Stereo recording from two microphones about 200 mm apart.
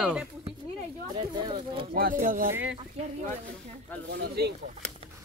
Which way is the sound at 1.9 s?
45° right (ahead or behind).